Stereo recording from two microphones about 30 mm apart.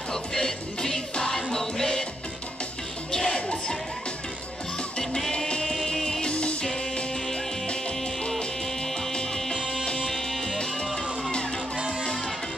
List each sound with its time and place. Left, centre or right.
0.1 s music: left
3.1 s music: left
3.3 s music: left
6.2 s music: left
10.0 s music: centre